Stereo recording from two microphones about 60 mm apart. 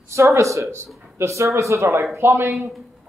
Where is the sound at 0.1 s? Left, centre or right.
Right.